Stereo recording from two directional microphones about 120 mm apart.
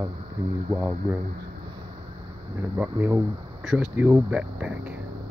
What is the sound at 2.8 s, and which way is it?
Speech, 15° right (ahead or behind).